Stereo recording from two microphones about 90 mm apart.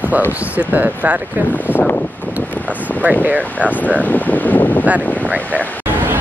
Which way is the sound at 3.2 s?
20° right (ahead or behind).